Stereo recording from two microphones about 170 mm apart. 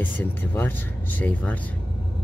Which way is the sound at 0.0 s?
10° left (ahead or behind).